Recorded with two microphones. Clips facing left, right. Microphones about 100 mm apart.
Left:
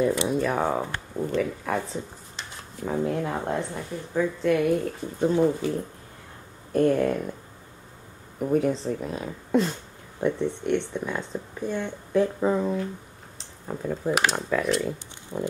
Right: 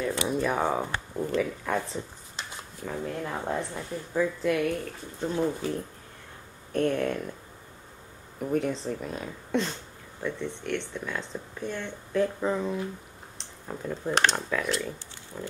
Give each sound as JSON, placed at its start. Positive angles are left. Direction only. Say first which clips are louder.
{"t": 0.0, "sound": "speech", "louder": "left 6 dB", "side_deg": 15}
{"t": 0.3, "sound": "speech", "louder": "left 2 dB", "side_deg": 0}
{"t": 2.8, "sound": "speech", "louder": "left 7 dB", "side_deg": 25}
{"t": 3.3, "sound": "speech", "louder": "left 3 dB", "side_deg": 10}
{"t": 6.7, "sound": "speech", "louder": "left 5 dB", "side_deg": 5}
{"t": 8.4, "sound": "speech", "louder": "left 4 dB", "side_deg": 5}
{"t": 10.4, "sound": "speech", "louder": "left 7 dB", "side_deg": 15}
{"t": 15.3, "sound": "pig", "louder": "left 8 dB", "side_deg": 35}